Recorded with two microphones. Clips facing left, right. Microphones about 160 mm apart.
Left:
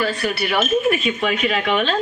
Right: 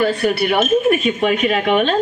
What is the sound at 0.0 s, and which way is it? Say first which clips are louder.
Speech: right 5 dB; 55° right (ahead or behind).